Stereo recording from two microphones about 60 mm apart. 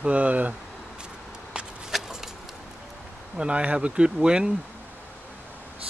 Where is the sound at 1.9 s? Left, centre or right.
Centre.